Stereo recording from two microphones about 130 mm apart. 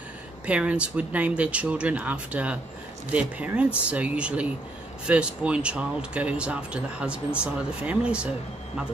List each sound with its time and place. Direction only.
0.5 s speech: 10° right (ahead or behind)